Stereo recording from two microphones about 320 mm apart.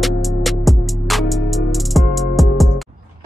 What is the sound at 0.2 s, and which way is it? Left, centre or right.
Music, centre.